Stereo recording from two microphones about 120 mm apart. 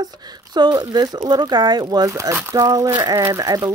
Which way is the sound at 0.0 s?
35° right (ahead or behind).